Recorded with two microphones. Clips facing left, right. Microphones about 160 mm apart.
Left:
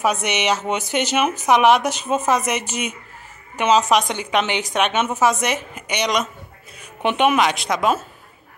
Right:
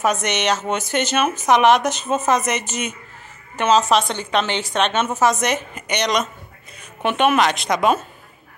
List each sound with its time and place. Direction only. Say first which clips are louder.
0.0 s a woman's voice: even; 10° left (ahead or behind)